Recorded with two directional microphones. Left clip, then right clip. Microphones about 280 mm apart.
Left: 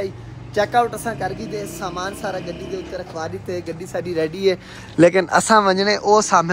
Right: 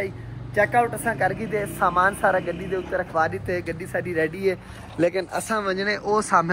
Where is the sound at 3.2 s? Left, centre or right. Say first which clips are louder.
Right 4 dB; centre.